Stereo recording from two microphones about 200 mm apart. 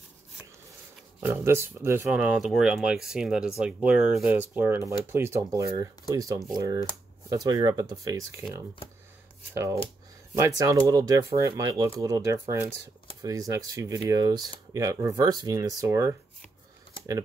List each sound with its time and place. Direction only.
1.2 s speech: 10° right (ahead or behind)